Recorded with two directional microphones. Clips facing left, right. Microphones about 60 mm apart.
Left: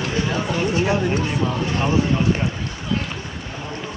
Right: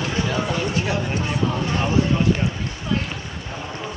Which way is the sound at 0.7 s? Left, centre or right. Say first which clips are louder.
Left 4 dB; centre.